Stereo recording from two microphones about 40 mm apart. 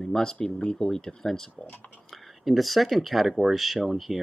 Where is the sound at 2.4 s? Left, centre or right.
Centre.